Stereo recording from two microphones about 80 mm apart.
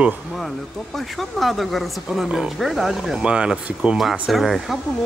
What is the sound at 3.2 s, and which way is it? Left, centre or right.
Speech, centre.